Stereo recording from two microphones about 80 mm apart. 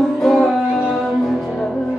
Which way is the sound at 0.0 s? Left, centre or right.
Centre.